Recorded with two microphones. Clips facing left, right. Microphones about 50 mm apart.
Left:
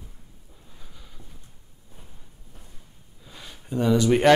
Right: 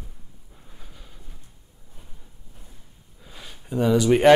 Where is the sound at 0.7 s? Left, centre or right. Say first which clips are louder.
Right 2 dB; centre.